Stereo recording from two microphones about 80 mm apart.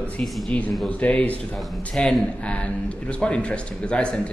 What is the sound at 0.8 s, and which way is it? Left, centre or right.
A man's voice, centre.